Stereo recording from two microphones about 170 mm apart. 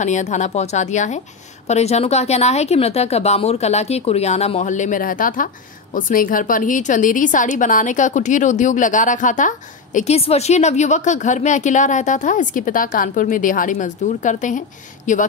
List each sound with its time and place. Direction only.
0.0 s a woman's voice: 45° left (ahead or behind)